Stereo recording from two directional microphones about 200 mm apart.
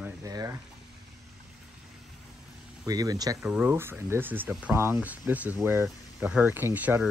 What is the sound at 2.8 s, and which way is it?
Speech, 20° right (ahead or behind).